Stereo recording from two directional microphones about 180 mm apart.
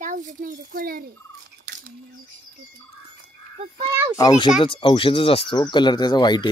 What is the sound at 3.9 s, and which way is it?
Speech, 10° right (ahead or behind).